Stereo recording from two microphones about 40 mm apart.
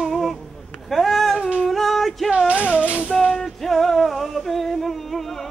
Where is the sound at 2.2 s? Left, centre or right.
Right.